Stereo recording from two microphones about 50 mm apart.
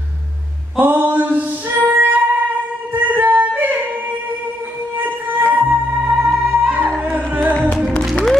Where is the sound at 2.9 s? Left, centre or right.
Right.